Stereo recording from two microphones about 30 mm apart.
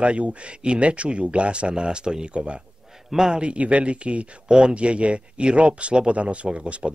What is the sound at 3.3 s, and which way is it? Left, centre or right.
Speech, right.